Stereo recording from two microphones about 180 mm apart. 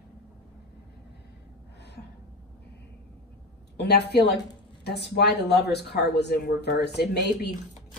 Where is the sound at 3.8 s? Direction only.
65° left (ahead or behind).